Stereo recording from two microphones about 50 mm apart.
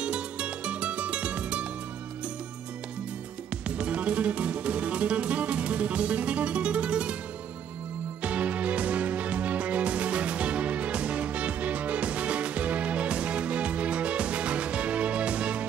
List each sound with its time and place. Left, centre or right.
0.0 s music: right
3.6 s music: right
8.2 s music: right